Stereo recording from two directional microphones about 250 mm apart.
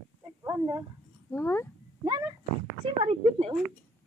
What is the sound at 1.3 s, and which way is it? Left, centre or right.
Speech, centre.